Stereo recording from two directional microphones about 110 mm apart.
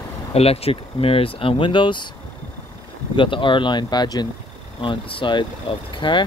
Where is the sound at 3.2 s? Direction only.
50° left (ahead or behind).